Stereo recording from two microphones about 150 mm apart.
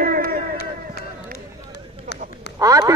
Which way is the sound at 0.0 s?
70° right (ahead or behind).